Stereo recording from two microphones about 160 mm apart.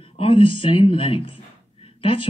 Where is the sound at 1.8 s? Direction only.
35° left (ahead or behind).